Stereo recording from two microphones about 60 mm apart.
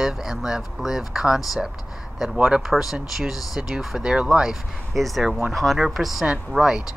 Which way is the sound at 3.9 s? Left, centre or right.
Centre.